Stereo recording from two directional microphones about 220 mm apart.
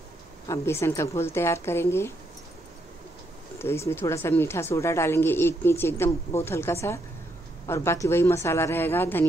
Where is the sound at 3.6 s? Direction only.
10° left (ahead or behind).